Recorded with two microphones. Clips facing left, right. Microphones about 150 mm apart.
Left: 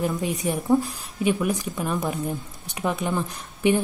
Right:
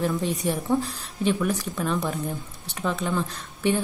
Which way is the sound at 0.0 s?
15° left (ahead or behind).